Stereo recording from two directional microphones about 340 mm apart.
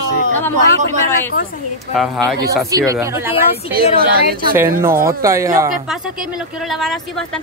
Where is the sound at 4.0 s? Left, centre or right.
Right.